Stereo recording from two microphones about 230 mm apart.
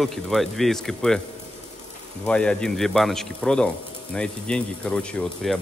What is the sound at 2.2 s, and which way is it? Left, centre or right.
Speech, centre.